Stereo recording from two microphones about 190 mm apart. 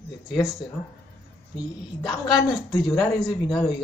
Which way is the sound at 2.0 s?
20° left (ahead or behind).